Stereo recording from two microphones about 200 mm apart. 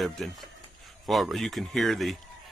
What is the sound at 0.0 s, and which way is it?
Speech, centre (ahead or behind).